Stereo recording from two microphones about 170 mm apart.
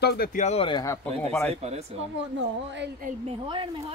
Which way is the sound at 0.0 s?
60° left (ahead or behind).